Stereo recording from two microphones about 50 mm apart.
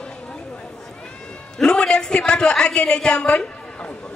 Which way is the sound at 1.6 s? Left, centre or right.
Centre.